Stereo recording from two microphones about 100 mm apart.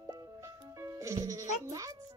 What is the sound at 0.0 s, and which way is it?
Music, 35° right (ahead or behind).